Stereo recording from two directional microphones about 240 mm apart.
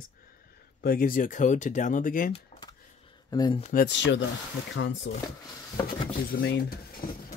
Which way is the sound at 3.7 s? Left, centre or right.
Left.